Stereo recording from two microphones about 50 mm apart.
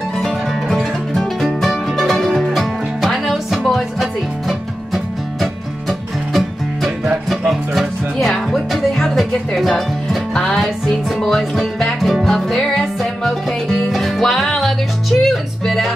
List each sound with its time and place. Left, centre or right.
0.2 s music: centre